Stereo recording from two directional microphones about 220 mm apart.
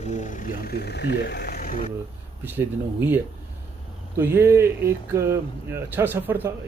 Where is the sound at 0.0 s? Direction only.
35° left (ahead or behind).